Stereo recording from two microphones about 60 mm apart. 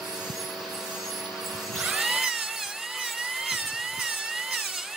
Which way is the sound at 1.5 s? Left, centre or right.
Centre.